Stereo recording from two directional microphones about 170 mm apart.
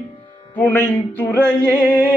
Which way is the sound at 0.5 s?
10° left (ahead or behind).